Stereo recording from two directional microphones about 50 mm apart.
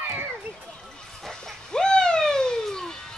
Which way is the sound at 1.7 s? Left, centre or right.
Centre.